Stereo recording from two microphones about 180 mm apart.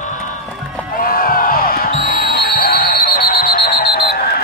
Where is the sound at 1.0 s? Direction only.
55° left (ahead or behind).